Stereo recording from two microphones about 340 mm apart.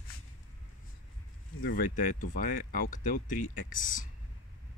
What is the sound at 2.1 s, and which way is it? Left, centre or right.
Speech, left.